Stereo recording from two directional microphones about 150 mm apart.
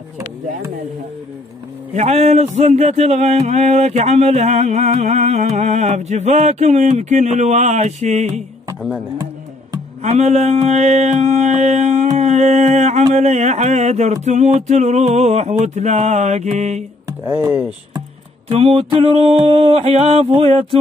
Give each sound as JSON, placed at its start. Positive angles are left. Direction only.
{"t": 2.0, "sound": "speech", "side_deg": -45}
{"t": 10.0, "sound": "speech", "side_deg": -50}
{"t": 17.2, "sound": "speech", "side_deg": -15}
{"t": 18.5, "sound": "a sound", "side_deg": -40}